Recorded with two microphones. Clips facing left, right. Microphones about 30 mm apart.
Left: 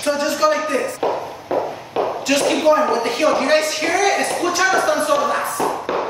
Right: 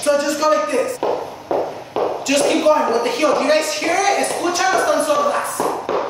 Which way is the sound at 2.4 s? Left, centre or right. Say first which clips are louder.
Even; centre.